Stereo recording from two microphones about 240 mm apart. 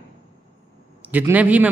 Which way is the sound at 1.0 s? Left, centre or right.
Centre.